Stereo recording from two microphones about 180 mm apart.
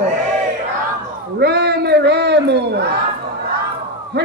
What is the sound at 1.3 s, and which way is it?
A man's voice, 65° right (ahead or behind).